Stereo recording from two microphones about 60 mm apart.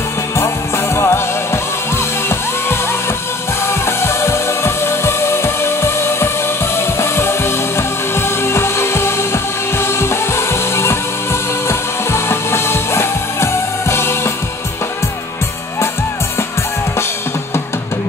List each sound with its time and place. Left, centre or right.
0.9 s music: left
3.6 s music: left
12.1 s music: left